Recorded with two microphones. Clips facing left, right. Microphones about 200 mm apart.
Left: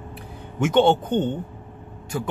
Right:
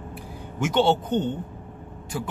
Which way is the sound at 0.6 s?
50° left (ahead or behind).